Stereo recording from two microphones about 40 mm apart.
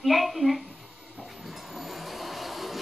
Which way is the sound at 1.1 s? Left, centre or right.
Centre.